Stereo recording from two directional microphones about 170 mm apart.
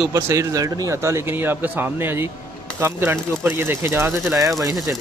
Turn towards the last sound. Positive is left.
turn(degrees=-20)  # may be behind; listen again after turning